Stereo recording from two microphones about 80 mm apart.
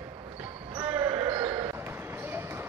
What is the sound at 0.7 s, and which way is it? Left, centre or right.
Basketball bounce, right.